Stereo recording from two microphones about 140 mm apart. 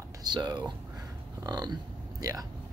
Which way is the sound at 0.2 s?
30° right (ahead or behind).